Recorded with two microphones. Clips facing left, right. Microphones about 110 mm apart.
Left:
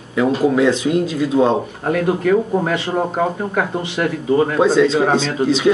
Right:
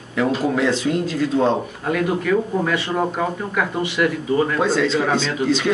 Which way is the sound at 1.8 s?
40° left (ahead or behind).